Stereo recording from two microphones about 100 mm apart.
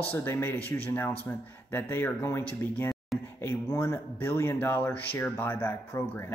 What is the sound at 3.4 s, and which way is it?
A man's voice, 25° left (ahead or behind).